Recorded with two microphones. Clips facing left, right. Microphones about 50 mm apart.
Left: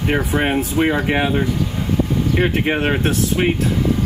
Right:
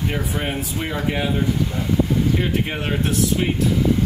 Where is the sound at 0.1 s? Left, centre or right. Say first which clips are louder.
Left 7 dB; left.